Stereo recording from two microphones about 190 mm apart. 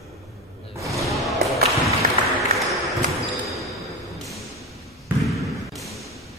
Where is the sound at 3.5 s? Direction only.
Centre (ahead or behind).